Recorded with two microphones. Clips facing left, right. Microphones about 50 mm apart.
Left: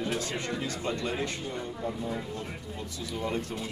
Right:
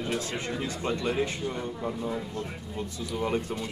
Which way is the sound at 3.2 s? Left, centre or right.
Right.